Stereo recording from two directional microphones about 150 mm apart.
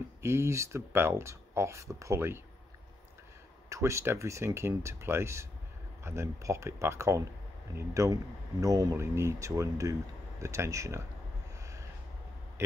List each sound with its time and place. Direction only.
0.2 s speech: 15° right (ahead or behind)
3.6 s speech: 20° right (ahead or behind)